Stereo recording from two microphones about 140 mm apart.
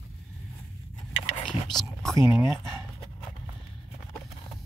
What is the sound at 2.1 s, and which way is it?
Speech, 20° right (ahead or behind).